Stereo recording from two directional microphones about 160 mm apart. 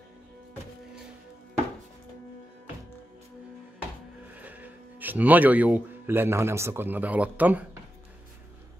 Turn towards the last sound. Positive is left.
turn(degrees=-10)  # may be behind; listen again after turning